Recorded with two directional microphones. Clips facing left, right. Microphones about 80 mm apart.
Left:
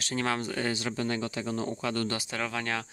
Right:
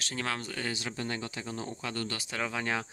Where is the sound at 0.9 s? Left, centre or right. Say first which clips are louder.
Left 5 dB; left.